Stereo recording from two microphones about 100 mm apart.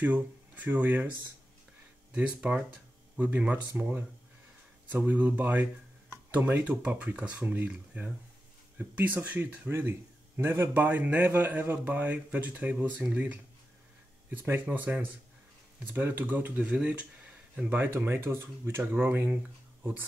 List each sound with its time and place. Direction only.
0.0 s speech: 15° right (ahead or behind)
2.1 s speech: 15° right (ahead or behind)